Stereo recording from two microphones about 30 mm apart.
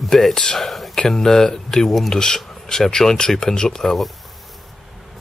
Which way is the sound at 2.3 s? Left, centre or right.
Centre.